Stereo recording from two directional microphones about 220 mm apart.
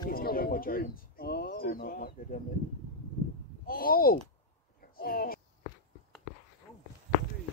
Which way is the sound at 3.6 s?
40° left (ahead or behind).